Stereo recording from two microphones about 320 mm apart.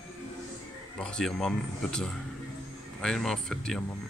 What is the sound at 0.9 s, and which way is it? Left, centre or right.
Speech, centre.